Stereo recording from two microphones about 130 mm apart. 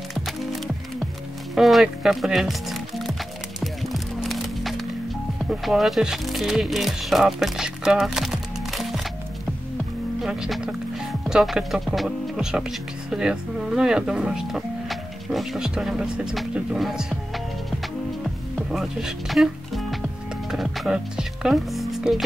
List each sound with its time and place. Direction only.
0.1 s music: centre (ahead or behind)
1.5 s speech: centre (ahead or behind)
3.6 s music: centre (ahead or behind)
5.4 s speech: centre (ahead or behind)
10.2 s speech: 5° right (ahead or behind)
18.2 s music: 5° right (ahead or behind)